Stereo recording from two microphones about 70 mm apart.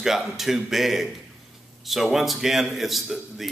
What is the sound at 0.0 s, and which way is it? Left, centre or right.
A man's voice, centre.